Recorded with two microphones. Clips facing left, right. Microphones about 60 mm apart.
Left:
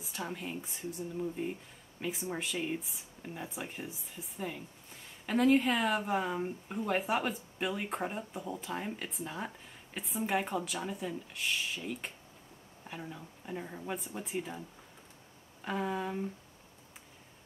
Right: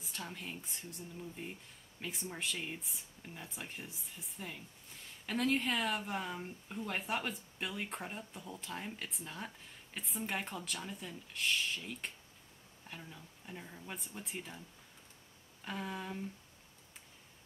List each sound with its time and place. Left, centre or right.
0.0 s speech: centre
13.5 s speech: centre
13.8 s speech: centre
15.6 s speech: centre